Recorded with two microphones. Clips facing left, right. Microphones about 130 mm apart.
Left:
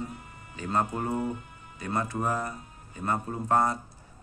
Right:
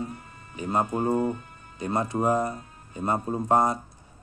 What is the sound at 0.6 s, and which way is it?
A man's voice, 15° right (ahead or behind).